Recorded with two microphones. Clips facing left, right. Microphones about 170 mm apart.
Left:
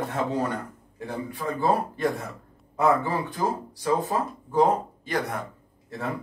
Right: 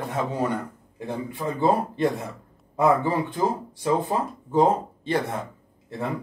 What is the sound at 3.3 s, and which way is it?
Speech, 25° right (ahead or behind).